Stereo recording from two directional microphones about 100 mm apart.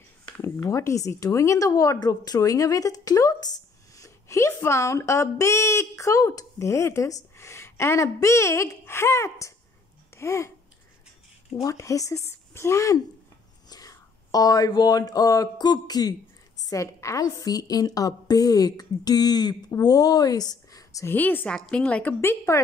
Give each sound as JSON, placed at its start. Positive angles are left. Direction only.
{"t": 0.4, "sound": "speech", "side_deg": 30}
{"t": 10.1, "sound": "babbling", "side_deg": 30}
{"t": 11.6, "sound": "speech", "side_deg": 30}
{"t": 21.1, "sound": "speech", "side_deg": 20}
{"t": 21.5, "sound": "a woman's voice", "side_deg": 5}
{"t": 22.2, "sound": "speech", "side_deg": 25}